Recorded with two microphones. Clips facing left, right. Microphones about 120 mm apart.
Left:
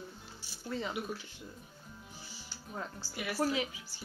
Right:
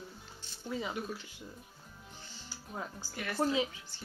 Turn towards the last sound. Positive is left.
turn(degrees=-20)  # may be behind; listen again after turning